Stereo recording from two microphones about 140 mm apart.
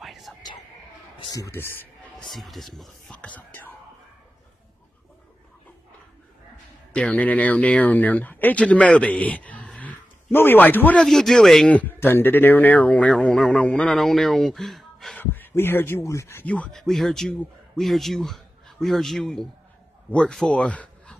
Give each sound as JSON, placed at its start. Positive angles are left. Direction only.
{"t": 0.0, "sound": "a sound", "side_deg": 0}
{"t": 1.3, "sound": "a man's voice", "side_deg": 20}
{"t": 2.1, "sound": "speech", "side_deg": 0}
{"t": 6.9, "sound": "speech", "side_deg": 10}
{"t": 15.1, "sound": "a man's voice", "side_deg": 15}